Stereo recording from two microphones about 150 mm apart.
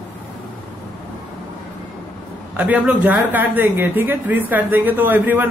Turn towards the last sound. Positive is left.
turn(degrees=-10)  # may be behind; listen again after turning